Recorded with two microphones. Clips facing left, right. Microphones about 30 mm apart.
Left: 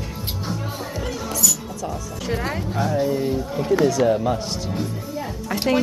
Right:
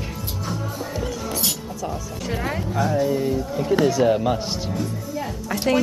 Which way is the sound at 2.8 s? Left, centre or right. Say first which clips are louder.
Even; centre.